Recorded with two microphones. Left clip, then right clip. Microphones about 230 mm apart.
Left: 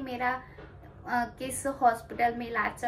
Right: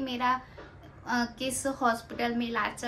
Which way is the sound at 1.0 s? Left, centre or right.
Centre.